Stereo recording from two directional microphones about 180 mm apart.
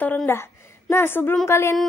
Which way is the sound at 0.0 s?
10° left (ahead or behind).